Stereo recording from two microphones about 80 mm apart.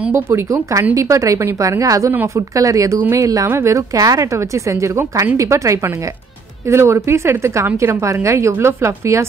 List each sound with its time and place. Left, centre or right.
0.1 s a woman's voice: right